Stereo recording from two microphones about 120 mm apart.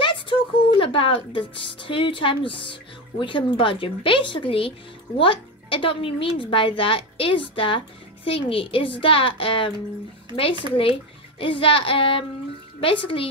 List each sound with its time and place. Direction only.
0.0 s speech: 45° left (ahead or behind)
10.8 s speech: 50° left (ahead or behind)